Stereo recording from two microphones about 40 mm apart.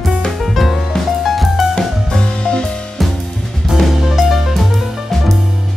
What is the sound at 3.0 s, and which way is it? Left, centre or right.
Drum kit, centre.